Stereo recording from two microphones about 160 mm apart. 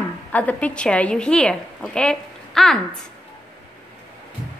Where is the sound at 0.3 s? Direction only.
10° left (ahead or behind).